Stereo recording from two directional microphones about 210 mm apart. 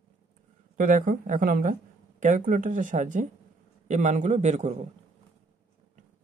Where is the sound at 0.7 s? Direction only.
40° right (ahead or behind).